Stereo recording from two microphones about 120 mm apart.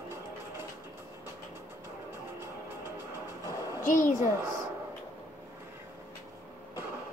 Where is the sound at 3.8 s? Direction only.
90° left.